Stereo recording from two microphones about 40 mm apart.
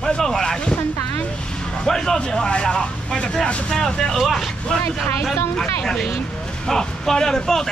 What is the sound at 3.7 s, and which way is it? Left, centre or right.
Speech, centre.